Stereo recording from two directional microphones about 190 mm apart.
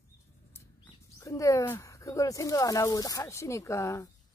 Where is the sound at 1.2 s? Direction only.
15° left (ahead or behind).